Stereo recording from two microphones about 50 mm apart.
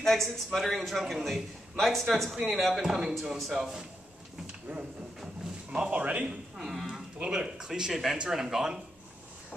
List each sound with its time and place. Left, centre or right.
0.0 s a man's voice: centre
2.8 s speech: centre
4.7 s a sound: right
5.7 s speech: right
6.2 s speech: centre